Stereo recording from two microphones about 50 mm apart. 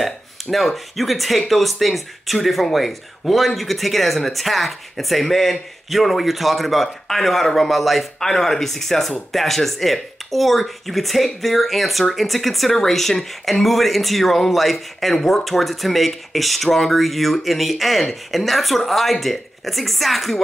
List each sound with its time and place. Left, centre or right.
0.0 s speech: centre